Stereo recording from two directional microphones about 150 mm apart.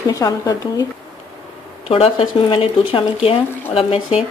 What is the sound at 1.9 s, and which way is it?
A woman's voice, 40° left (ahead or behind).